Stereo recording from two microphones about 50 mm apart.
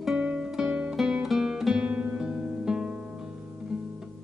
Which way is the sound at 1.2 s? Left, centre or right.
Centre.